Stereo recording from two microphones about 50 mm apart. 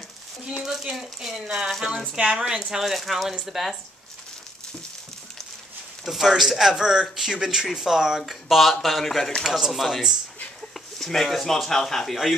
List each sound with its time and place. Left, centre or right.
0.6 s speech: centre
1.7 s speech: centre
2.1 s speech: centre
2.8 s speech: centre
6.0 s speech: centre
9.4 s speech: centre
10.7 s speech: centre